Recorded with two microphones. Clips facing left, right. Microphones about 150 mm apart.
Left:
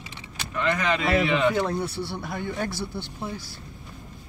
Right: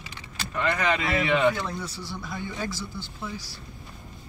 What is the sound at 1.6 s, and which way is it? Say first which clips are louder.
Speech: left 7 dB; 60° left (ahead or behind).